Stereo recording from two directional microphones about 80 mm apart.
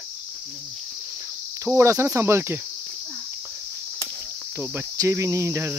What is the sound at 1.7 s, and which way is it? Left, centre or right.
Cricket, right.